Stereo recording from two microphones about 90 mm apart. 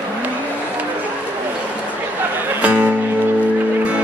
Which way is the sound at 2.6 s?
15° right (ahead or behind).